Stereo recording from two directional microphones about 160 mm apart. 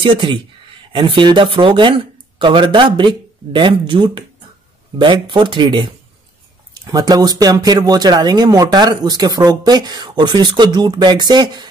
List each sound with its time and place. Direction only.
0.0 s speech: 30° right (ahead or behind)